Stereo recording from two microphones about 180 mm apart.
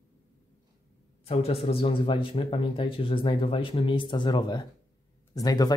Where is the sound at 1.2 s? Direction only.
35° left (ahead or behind).